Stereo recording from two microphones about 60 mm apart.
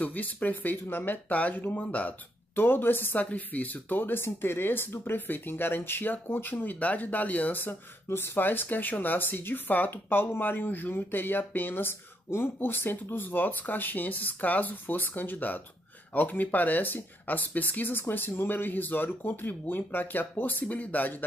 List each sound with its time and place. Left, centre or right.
0.0 s speech: left